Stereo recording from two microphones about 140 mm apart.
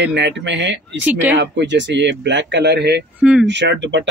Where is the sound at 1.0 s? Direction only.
10° right (ahead or behind).